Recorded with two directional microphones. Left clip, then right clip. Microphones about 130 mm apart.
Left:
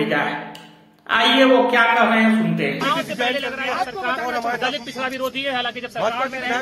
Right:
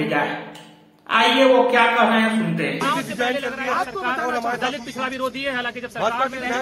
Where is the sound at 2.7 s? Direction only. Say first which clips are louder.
Right 1 dB; 20° right (ahead or behind).